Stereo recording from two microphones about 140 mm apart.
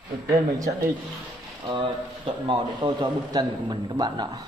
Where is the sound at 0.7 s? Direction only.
90° right.